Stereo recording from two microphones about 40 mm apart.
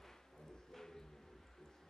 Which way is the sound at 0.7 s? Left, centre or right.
Centre.